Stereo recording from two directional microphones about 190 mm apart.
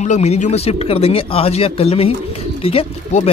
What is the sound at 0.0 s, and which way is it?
A man's voice, 35° left (ahead or behind).